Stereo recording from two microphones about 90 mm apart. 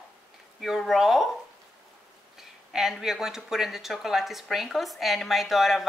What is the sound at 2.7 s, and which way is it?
Speech, 5° right (ahead or behind).